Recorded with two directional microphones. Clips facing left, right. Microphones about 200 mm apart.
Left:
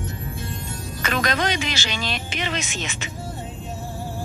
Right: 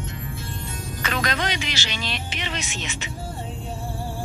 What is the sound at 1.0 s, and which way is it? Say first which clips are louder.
Music: left 3 dB; 45° left (ahead or behind).